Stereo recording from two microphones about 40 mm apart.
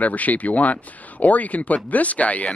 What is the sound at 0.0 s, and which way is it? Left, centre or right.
Speech, left.